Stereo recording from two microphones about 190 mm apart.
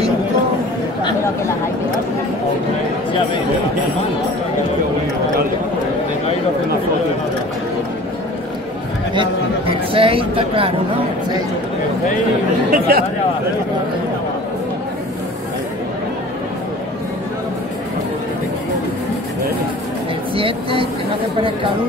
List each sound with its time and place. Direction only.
9.1 s a man's voice: 25° right (ahead or behind)
12.7 s speech: 50° right (ahead or behind)
20.3 s a sound: 30° right (ahead or behind)